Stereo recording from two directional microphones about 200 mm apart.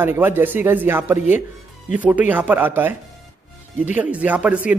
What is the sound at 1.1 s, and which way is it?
Speech, 35° left (ahead or behind).